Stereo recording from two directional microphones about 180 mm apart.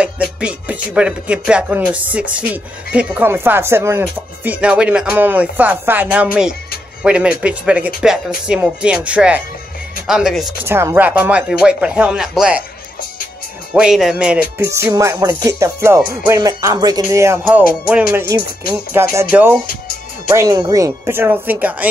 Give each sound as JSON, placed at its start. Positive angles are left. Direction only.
{"t": 0.0, "sound": "speech", "side_deg": -5}
{"t": 4.5, "sound": "music", "side_deg": -5}
{"t": 7.0, "sound": "speech", "side_deg": -5}
{"t": 10.6, "sound": "music", "side_deg": -15}
{"t": 13.7, "sound": "speech", "side_deg": -5}
{"t": 14.6, "sound": "music", "side_deg": -15}
{"t": 18.3, "sound": "speech", "side_deg": -20}
{"t": 18.7, "sound": "music", "side_deg": -15}